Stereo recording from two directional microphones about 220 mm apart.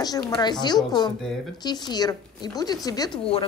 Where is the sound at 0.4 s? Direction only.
20° left (ahead or behind).